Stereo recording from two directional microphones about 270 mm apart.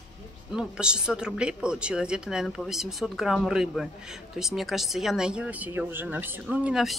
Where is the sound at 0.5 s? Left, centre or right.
Centre.